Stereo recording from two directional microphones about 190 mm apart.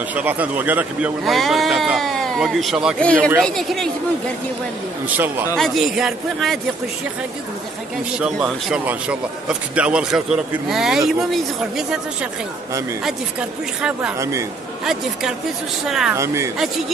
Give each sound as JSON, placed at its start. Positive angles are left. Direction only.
{"t": 0.1, "sound": "a man's voice", "side_deg": -10}
{"t": 5.0, "sound": "a man's voice", "side_deg": -10}
{"t": 8.2, "sound": "a man's voice", "side_deg": 0}
{"t": 14.1, "sound": "speech", "side_deg": -15}
{"t": 15.8, "sound": "a man's voice", "side_deg": 0}